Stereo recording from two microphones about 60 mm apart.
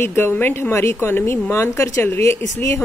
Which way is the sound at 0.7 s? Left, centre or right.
Left.